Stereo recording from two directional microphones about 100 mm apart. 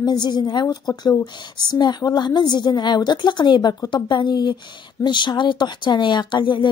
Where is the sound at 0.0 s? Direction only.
45° left (ahead or behind).